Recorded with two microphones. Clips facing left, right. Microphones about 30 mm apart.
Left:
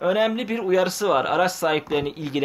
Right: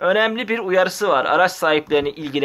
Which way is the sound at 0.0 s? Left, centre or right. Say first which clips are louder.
Right 4 dB; right.